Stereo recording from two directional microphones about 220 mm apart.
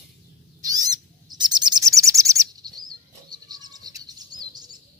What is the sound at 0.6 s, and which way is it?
Owl, 15° right (ahead or behind).